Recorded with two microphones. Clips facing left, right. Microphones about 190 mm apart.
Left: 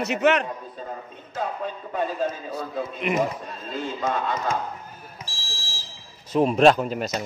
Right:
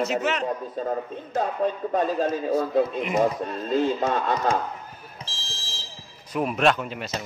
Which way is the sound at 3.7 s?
40° right (ahead or behind).